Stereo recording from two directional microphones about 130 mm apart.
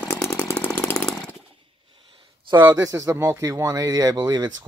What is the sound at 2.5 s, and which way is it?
Speech, 30° right (ahead or behind).